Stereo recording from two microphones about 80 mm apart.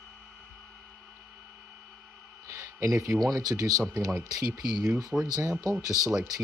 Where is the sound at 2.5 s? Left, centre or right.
Right.